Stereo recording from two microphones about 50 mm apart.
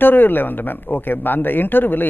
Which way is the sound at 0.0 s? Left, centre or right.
Left.